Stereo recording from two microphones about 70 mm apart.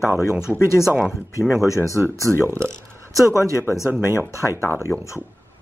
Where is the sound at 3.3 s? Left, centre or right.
Left.